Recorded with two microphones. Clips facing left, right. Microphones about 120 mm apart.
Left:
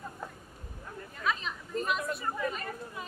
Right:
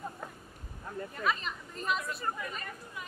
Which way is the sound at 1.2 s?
Centre (ahead or behind).